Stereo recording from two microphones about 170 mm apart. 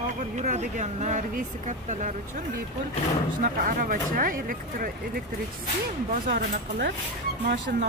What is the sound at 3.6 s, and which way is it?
Speech, 55° right (ahead or behind).